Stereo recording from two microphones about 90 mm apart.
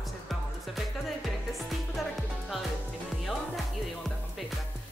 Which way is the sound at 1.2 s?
Centre (ahead or behind).